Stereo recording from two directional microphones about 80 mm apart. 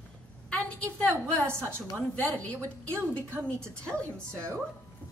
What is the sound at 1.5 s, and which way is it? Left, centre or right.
Speech, right.